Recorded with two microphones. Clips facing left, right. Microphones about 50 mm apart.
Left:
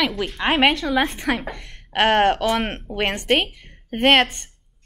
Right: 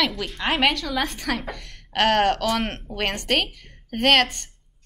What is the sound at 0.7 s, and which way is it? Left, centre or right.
A woman's voice, left.